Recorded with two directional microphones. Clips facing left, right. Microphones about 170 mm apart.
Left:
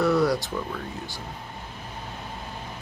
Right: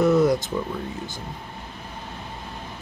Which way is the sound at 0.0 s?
20° right (ahead or behind).